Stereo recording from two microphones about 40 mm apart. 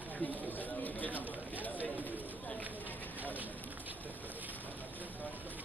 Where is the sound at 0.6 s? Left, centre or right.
Left.